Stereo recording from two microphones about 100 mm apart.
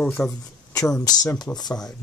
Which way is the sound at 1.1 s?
40° left (ahead or behind).